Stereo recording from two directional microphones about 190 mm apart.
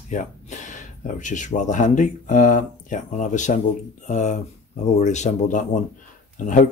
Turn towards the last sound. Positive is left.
turn(degrees=40)  # may be behind; listen again after turning